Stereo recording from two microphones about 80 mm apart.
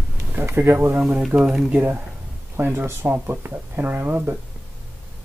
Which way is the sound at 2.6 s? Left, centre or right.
Right.